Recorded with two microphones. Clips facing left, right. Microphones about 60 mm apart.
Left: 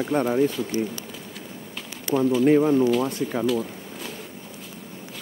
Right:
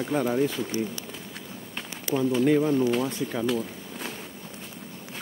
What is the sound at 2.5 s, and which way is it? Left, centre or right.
Speech, centre.